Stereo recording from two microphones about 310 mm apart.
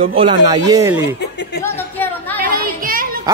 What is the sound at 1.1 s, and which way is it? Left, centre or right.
Chuckle, left.